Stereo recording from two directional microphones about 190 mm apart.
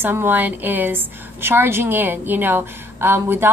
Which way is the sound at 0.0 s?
10° right (ahead or behind).